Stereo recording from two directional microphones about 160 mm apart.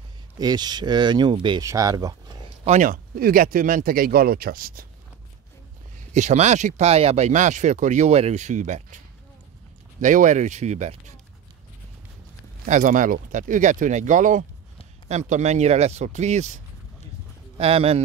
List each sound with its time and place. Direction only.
0.4 s speech: 25° right (ahead or behind)
2.6 s speech: 50° right (ahead or behind); by 4.8 s 65° right (ahead or behind)
6.1 s speech: 45° right (ahead or behind)
12.6 s speech: 50° right (ahead or behind)